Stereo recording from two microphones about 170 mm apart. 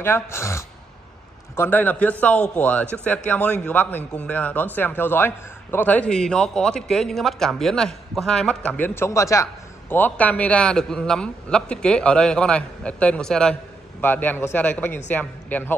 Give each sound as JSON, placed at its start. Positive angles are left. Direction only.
{"t": 0.0, "sound": "a man's voice", "side_deg": 15}